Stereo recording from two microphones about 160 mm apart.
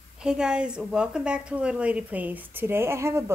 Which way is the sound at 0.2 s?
5° right (ahead or behind).